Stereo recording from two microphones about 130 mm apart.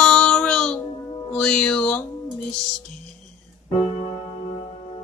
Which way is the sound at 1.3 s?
10° left (ahead or behind).